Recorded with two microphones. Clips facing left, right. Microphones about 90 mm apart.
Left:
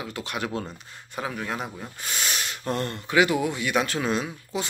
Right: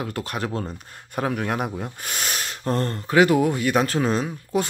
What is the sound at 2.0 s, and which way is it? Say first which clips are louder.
Speech: right 1 dB; 45° right (ahead or behind).